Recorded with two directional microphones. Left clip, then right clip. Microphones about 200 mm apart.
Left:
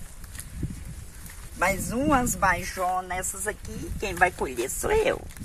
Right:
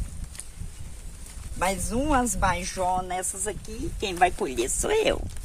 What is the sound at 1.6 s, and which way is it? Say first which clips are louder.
Speech: left 2 dB; 40° right (ahead or behind).